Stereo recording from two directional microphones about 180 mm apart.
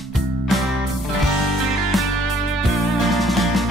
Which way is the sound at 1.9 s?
Centre (ahead or behind).